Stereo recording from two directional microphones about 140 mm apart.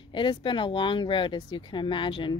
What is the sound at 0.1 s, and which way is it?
Speech, 35° left (ahead or behind).